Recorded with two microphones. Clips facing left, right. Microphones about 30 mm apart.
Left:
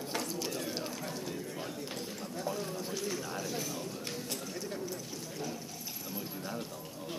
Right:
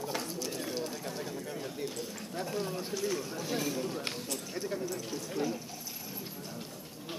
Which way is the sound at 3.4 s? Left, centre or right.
Right.